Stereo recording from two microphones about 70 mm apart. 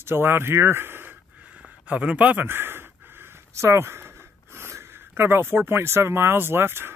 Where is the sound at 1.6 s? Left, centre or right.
Centre.